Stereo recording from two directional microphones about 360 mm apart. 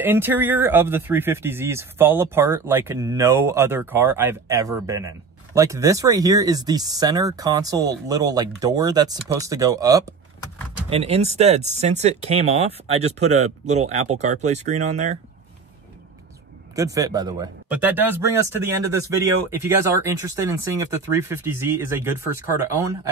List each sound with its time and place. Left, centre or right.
0.0 s speech: centre
16.7 s speech: centre